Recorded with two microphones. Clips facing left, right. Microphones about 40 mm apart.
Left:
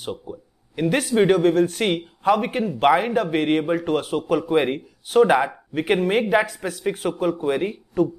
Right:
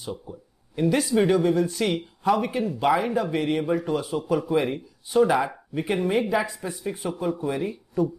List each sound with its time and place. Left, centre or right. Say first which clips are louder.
0.0 s speech: left 4 dB; left